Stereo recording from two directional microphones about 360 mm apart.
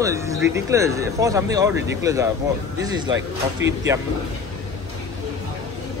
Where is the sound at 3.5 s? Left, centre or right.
Right.